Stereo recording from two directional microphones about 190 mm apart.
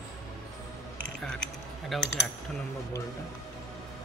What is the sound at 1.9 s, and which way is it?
Speech, centre (ahead or behind).